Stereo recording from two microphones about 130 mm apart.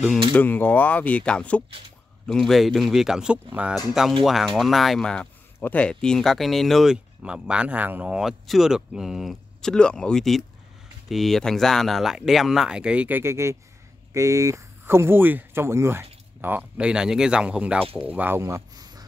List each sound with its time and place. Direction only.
0.4 s speech: 15° left (ahead or behind); by 3.7 s 10° right (ahead or behind)
3.7 s speech: centre (ahead or behind); by 19.0 s 30° right (ahead or behind)